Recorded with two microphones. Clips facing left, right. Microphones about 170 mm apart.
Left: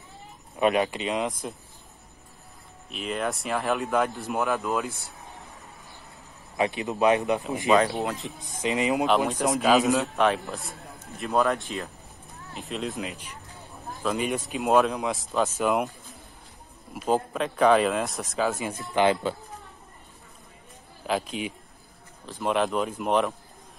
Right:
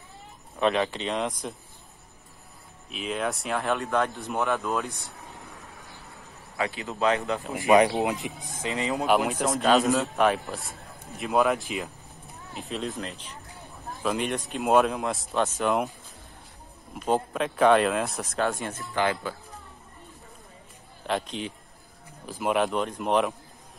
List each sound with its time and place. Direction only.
0.6 s speech: 10° left (ahead or behind)
2.9 s a man's voice: centre (ahead or behind)
6.5 s speech: 20° left (ahead or behind)
7.6 s speech: 20° right (ahead or behind)
8.5 s speech: 20° left (ahead or behind)
9.0 s a man's voice: 5° right (ahead or behind)
9.4 s a man's voice: 5° left (ahead or behind)
14.0 s a man's voice: centre (ahead or behind)
16.9 s a man's voice: centre (ahead or behind)
18.8 s speech: 20° left (ahead or behind)
21.1 s speech: 5° left (ahead or behind)
22.2 s a man's voice: 5° right (ahead or behind)